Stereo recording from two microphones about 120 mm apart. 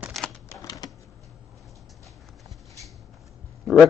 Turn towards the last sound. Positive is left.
turn(degrees=0)  # may be behind; listen again after turning